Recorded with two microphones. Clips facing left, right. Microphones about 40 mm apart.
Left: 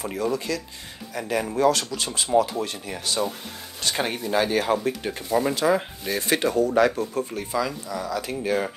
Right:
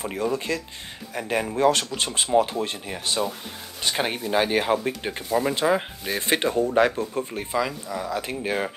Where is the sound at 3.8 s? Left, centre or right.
Centre.